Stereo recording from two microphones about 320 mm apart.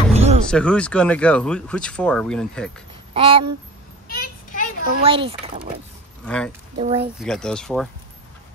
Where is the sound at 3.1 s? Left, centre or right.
Centre.